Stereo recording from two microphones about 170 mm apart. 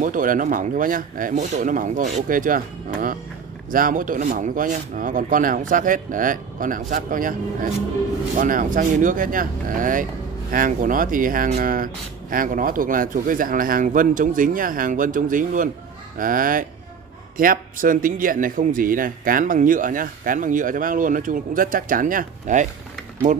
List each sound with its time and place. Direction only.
0.0 s speech: 50° right (ahead or behind)
8.4 s speech: 50° right (ahead or behind)